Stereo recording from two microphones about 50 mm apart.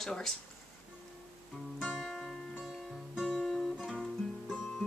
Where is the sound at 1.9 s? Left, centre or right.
Centre.